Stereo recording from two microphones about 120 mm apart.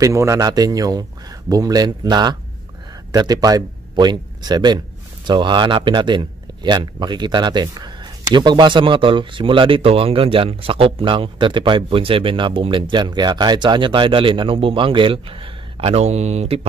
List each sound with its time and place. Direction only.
0.0 s speech: 25° right (ahead or behind); by 16.6 s 60° right (ahead or behind)